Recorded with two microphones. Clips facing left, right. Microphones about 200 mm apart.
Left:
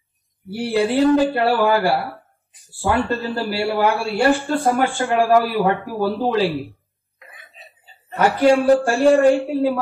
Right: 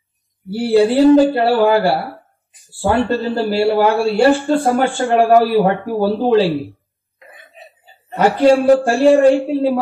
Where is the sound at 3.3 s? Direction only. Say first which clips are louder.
Right 6 dB; 35° right (ahead or behind).